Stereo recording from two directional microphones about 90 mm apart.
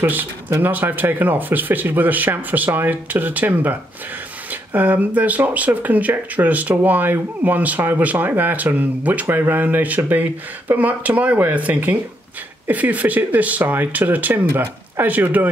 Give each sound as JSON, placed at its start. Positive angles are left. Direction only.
{"t": 0.0, "sound": "speech", "side_deg": -20}